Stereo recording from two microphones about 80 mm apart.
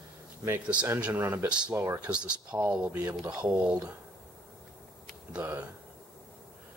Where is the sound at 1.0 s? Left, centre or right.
Right.